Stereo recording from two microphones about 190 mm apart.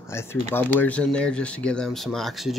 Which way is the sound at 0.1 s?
15° left (ahead or behind).